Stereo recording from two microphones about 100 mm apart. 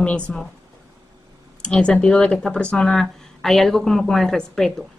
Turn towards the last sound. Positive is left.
turn(degrees=5)  # may be behind; listen again after turning